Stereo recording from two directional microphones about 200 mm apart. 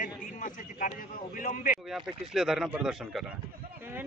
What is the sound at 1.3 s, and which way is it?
Speech, 40° left (ahead or behind).